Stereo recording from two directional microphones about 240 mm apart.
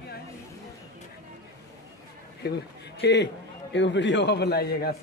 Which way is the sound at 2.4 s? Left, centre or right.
Left.